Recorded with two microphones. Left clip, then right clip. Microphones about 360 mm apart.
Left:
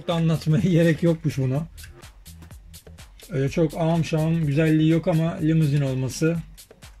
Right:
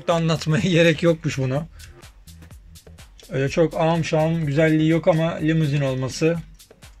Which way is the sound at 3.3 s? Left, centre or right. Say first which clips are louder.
Right 4 dB; right.